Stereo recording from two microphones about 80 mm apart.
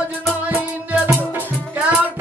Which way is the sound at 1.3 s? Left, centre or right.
Centre.